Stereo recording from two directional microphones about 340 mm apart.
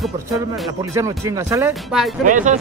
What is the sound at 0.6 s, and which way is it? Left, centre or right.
Speech, centre.